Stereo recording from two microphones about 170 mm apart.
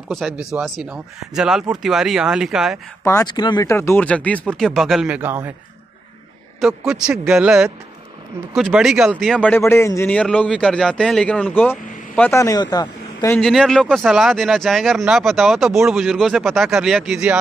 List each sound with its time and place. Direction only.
0.4 s speech: 5° right (ahead or behind)
3.3 s speech: 25° left (ahead or behind)
3.7 s speech: 15° left (ahead or behind); by 5.5 s 10° right (ahead or behind)
6.9 s speech: 5° right (ahead or behind); by 13.4 s 20° left (ahead or behind)
13.4 s speech: centre (ahead or behind)